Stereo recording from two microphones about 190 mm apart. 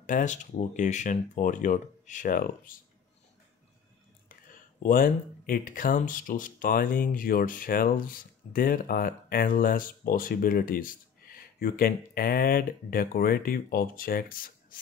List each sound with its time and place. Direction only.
0.0 s speech: 40° left (ahead or behind)
4.5 s speech: 45° left (ahead or behind)